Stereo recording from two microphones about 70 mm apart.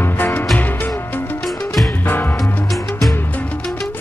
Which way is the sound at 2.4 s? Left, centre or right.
Centre.